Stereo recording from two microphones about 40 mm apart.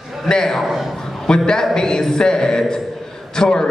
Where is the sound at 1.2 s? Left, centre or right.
Centre.